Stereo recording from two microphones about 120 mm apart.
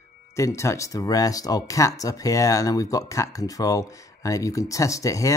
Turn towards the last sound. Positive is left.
turn(degrees=25)  # may be behind; listen again after turning